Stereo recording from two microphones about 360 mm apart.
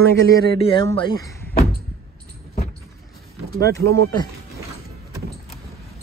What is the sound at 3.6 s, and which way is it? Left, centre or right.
Speech, centre.